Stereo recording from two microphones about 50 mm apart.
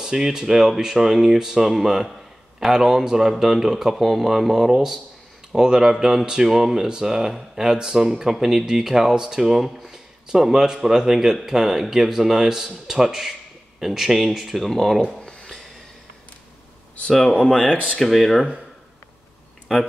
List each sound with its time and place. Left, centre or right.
0.0 s speech: centre
15.0 s a sound: centre
17.1 s speech: centre
17.4 s speech: left
17.9 s speech: centre
19.7 s speech: centre